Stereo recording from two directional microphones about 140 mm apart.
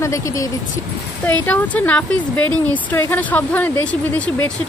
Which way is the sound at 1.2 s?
10° left (ahead or behind).